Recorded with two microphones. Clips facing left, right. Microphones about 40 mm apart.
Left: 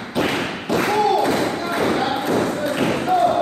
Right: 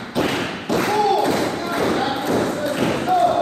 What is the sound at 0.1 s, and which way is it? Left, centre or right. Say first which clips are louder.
Thump: even; centre.